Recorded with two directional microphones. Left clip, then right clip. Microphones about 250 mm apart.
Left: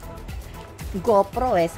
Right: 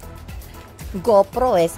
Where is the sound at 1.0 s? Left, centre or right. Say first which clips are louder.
Right 4 dB; right.